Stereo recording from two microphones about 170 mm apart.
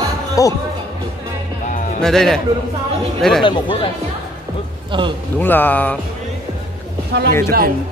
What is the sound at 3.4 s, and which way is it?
Speech, 30° left (ahead or behind).